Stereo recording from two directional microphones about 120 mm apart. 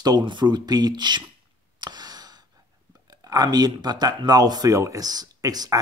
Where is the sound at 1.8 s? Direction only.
35° right (ahead or behind).